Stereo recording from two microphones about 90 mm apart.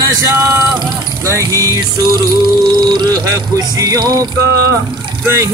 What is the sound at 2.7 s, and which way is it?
Music, 55° right (ahead or behind).